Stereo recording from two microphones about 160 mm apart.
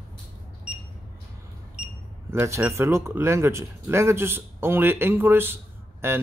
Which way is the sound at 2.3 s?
15° right (ahead or behind).